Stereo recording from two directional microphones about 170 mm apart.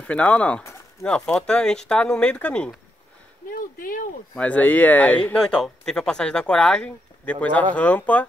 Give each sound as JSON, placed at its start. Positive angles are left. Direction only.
{"t": 0.0, "sound": "speech", "side_deg": 5}
{"t": 3.5, "sound": "a sound", "side_deg": 55}
{"t": 4.4, "sound": "speech", "side_deg": 10}